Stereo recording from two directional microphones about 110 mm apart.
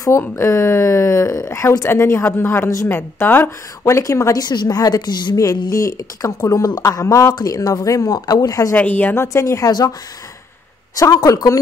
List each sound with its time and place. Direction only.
0.2 s speech: 25° left (ahead or behind)
8.7 s speech: 15° left (ahead or behind)
9.7 s speech: 40° left (ahead or behind)
11.0 s speech: 30° left (ahead or behind)